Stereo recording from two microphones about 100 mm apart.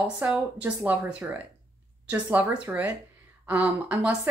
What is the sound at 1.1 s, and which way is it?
Speech, 15° right (ahead or behind).